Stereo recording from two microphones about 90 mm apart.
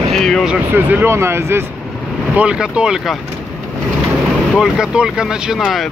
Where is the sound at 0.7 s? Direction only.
20° right (ahead or behind).